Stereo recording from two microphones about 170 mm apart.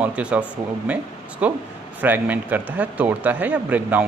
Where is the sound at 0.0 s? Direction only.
5° right (ahead or behind).